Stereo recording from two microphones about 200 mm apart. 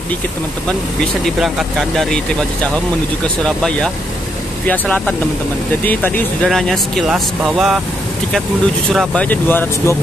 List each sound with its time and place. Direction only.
1.4 s speech: centre (ahead or behind)
3.4 s speech: 5° left (ahead or behind)
8.9 s speech: 5° left (ahead or behind)